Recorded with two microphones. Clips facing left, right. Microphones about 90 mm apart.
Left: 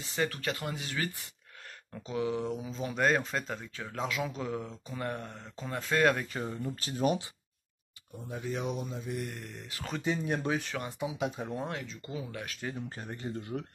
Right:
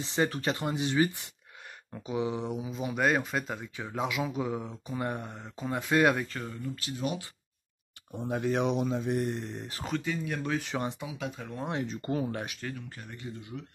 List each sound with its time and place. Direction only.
0.0 s speech: 25° right (ahead or behind); by 6.2 s 10° right (ahead or behind)
6.2 s speech: 15° left (ahead or behind)
6.6 s speech: 40° left (ahead or behind)
8.1 s speech: 80° right
9.2 s speech: 30° right (ahead or behind)
10.0 s speech: 25° left (ahead or behind)
11.8 s speech: 50° right (ahead or behind)
12.7 s speech: 35° left (ahead or behind)
13.4 s speech: 50° left (ahead or behind)